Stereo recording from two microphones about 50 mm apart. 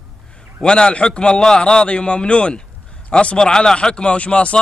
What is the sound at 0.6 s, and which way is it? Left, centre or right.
A man's voice, centre.